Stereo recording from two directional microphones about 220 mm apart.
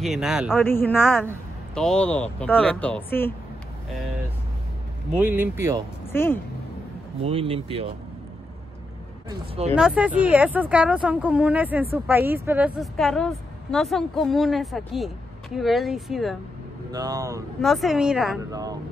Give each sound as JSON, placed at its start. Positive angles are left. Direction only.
{"t": 0.0, "sound": "a woman's voice", "side_deg": 0}
{"t": 0.7, "sound": "a woman's voice", "side_deg": 10}
{"t": 5.1, "sound": "speech", "side_deg": -10}
{"t": 6.1, "sound": "speech", "side_deg": 10}
{"t": 7.2, "sound": "speech", "side_deg": -25}
{"t": 9.8, "sound": "a woman's voice", "side_deg": -5}
{"t": 16.9, "sound": "speech", "side_deg": -15}
{"t": 17.6, "sound": "a woman's voice", "side_deg": 0}
{"t": 18.4, "sound": "speech", "side_deg": -15}